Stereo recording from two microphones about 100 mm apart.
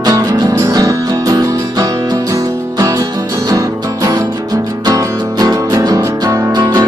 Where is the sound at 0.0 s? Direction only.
40° right (ahead or behind).